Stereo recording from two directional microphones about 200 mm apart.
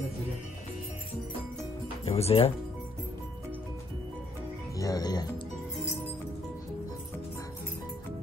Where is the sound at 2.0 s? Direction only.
30° left (ahead or behind).